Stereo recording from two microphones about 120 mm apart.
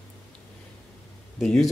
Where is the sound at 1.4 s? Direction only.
5° left (ahead or behind).